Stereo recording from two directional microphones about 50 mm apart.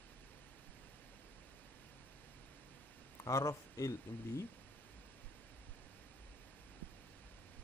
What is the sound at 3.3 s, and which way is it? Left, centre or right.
Speech, left.